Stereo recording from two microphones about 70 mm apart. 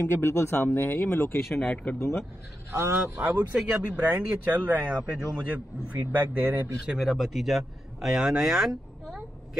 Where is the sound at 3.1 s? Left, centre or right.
Right.